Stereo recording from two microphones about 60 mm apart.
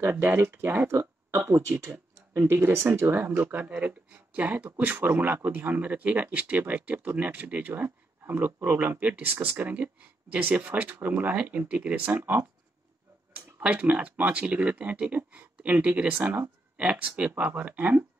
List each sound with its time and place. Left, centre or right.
0.0 s speech: right
2.3 s speech: right